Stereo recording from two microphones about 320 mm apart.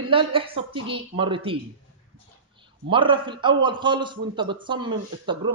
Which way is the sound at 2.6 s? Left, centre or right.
Centre.